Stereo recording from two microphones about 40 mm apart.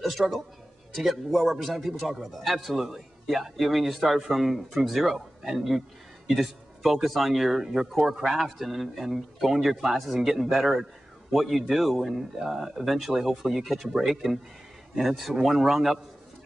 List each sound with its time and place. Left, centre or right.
0.2 s speech: right
0.9 s a man's voice: centre